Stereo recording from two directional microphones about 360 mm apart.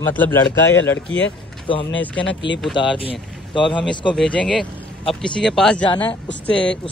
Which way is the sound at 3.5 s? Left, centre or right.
Centre.